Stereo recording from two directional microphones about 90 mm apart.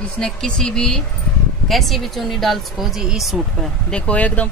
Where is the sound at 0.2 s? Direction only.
10° left (ahead or behind).